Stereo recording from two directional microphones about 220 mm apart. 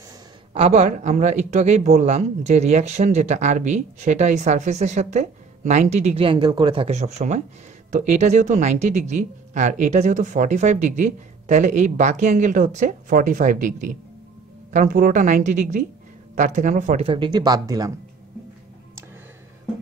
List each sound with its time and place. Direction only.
0.6 s speech: 30° right (ahead or behind)